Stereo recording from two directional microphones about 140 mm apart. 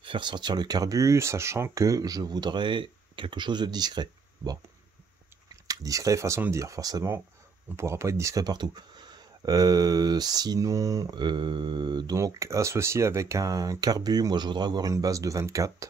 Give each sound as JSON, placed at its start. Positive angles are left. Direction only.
{"t": 0.0, "sound": "speech", "side_deg": -35}
{"t": 5.7, "sound": "speech", "side_deg": -25}